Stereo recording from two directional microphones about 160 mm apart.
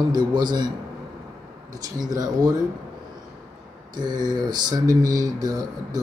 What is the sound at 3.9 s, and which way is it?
Speech, 25° right (ahead or behind).